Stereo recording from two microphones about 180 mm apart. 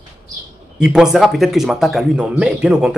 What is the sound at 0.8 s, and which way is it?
Speech, 5° right (ahead or behind).